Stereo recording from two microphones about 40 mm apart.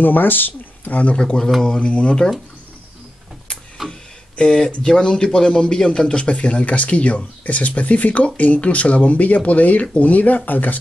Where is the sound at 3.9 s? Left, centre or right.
Centre.